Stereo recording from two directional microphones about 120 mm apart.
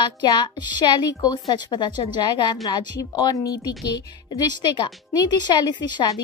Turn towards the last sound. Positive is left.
turn(degrees=35)  # may be behind; listen again after turning